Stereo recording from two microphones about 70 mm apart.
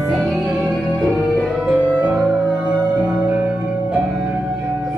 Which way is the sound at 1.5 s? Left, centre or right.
Centre.